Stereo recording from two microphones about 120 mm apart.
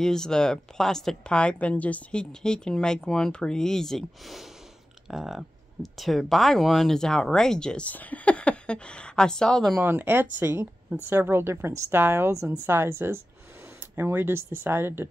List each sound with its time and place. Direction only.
0.0 s speech: 5° left (ahead or behind)
9.8 s a woman's voice: 20° right (ahead or behind)